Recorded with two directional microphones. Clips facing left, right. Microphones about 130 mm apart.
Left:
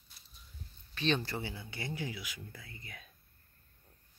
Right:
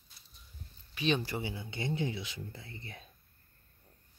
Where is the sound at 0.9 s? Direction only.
10° right (ahead or behind); by 3.0 s 30° right (ahead or behind).